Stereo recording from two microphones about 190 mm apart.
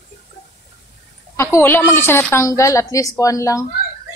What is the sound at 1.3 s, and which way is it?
A woman's voice, 15° left (ahead or behind).